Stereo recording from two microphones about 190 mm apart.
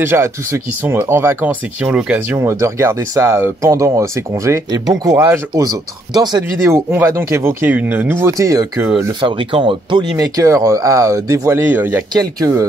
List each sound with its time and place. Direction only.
0.0 s speech: 15° right (ahead or behind)
9.2 s speech: 25° right (ahead or behind)